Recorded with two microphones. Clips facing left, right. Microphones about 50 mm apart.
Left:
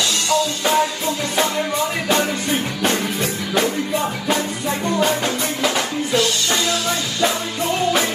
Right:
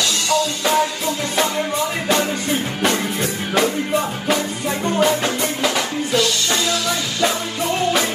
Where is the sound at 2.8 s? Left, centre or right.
Right.